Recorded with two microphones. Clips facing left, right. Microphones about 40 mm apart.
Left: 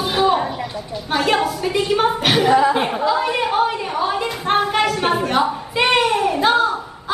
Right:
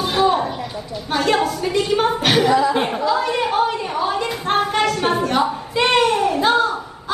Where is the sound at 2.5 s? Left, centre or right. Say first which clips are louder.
Left 5 dB; left.